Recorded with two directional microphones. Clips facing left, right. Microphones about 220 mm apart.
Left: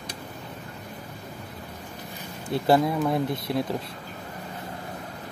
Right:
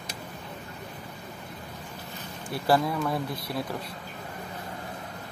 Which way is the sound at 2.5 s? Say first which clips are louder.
Left 4 dB; 20° left (ahead or behind).